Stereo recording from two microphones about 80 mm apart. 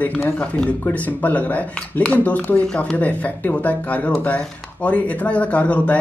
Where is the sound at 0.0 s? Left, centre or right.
Centre.